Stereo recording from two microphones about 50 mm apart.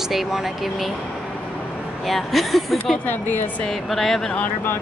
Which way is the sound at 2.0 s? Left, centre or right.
Centre.